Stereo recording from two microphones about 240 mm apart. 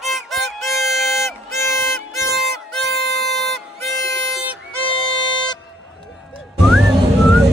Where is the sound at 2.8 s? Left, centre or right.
Right.